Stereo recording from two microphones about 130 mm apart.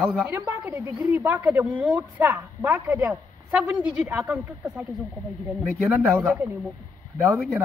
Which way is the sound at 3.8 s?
10° right (ahead or behind).